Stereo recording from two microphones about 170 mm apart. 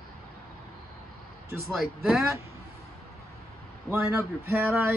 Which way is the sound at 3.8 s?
15° right (ahead or behind).